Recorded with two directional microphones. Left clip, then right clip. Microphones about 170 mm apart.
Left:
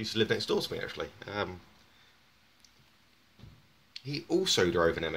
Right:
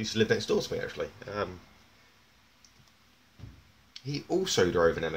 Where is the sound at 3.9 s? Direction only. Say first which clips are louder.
Even; 10° left (ahead or behind).